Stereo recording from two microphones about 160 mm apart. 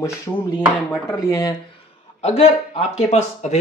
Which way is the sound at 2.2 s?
40° left (ahead or behind).